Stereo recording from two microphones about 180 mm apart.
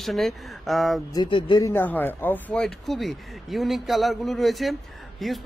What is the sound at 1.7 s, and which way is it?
Speech, 10° left (ahead or behind).